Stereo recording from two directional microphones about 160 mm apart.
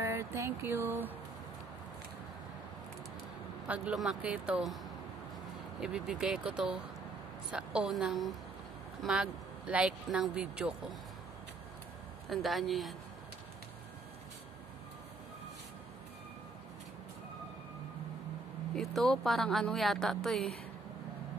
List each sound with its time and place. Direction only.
0.0 s music: 15° right (ahead or behind)
3.6 s speech: 5° right (ahead or behind)
5.8 s speech: 5° right (ahead or behind)
12.3 s speech: centre (ahead or behind)
18.8 s speech: centre (ahead or behind)